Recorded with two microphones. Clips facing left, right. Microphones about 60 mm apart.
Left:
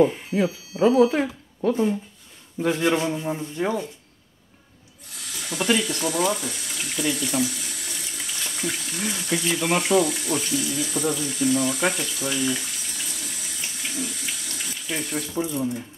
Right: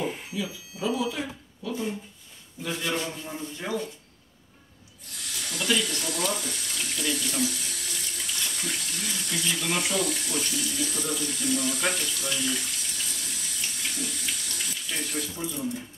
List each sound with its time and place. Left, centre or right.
0.3 s speech: left
2.9 s speech: left
5.3 s snake: centre
5.8 s water: centre
9.2 s speech: centre
15.5 s speech: centre